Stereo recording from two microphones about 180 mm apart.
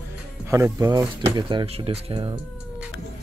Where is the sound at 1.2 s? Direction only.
30° right (ahead or behind).